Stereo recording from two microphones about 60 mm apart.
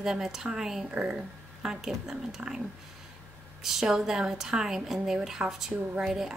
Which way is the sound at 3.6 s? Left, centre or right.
Centre.